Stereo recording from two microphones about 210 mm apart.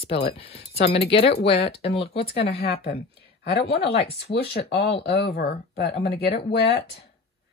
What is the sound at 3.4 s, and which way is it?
Speech, 50° left (ahead or behind).